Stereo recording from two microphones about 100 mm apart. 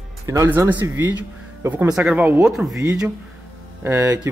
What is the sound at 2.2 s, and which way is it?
Speech, 20° right (ahead or behind).